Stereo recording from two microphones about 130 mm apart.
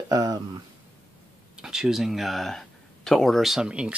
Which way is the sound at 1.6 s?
5° right (ahead or behind).